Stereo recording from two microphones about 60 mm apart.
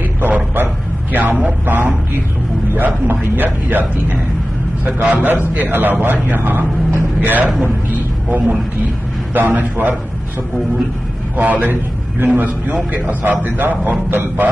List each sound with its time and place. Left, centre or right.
0.2 s a sound: right
1.1 s a man's voice: right
11.3 s a man's voice: right